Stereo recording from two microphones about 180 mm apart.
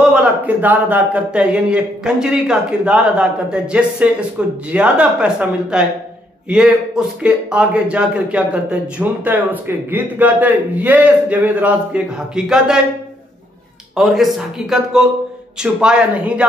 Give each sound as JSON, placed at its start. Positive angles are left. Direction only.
{"t": 0.1, "sound": "a man's voice", "side_deg": -10}
{"t": 13.9, "sound": "speech", "side_deg": 0}